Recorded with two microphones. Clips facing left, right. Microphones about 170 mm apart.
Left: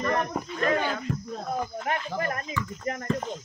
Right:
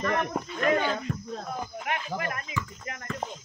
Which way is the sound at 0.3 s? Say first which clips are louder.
Even; 5° right (ahead or behind).